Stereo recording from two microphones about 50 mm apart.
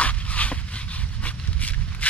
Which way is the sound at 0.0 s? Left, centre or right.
Left.